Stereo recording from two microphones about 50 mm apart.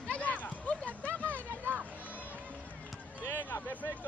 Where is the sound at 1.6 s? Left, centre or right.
Right.